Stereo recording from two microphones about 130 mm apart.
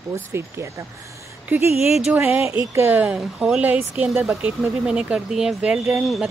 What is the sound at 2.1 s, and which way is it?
A woman's voice, 15° right (ahead or behind).